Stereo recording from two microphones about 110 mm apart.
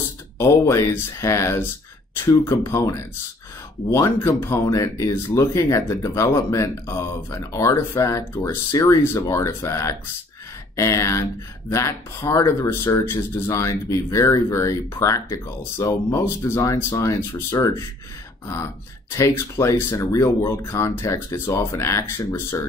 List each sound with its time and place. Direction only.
0.4 s speech: 25° left (ahead or behind)